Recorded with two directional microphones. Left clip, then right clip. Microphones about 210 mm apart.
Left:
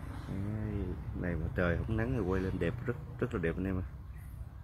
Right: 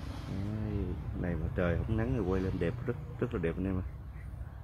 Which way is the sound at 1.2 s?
Centre (ahead or behind).